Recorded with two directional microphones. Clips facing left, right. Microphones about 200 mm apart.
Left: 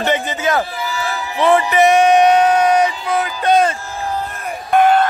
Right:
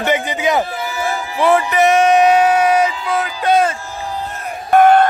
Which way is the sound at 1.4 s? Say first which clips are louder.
Left 1 dB; 5° right (ahead or behind).